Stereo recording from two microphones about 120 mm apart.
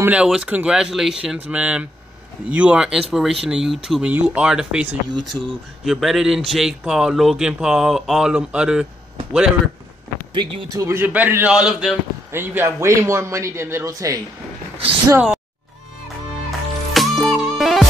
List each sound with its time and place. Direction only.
0.0 s speech: 10° right (ahead or behind)
5.3 s speech: 15° left (ahead or behind)
5.9 s speech: centre (ahead or behind)
10.3 s speech: 40° right (ahead or behind)
10.8 s speech: 20° right (ahead or behind); by 12.0 s 5° right (ahead or behind)
12.3 s a man's voice: 20° right (ahead or behind)
15.1 s speech: 5° right (ahead or behind)
16.4 s music: centre (ahead or behind)